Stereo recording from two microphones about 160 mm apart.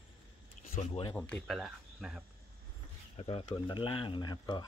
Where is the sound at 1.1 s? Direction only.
5° left (ahead or behind).